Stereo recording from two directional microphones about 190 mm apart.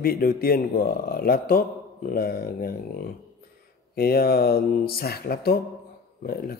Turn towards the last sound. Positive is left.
turn(degrees=55)  # may be behind; listen again after turning